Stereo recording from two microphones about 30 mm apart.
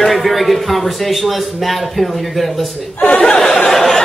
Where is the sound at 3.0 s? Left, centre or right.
Left.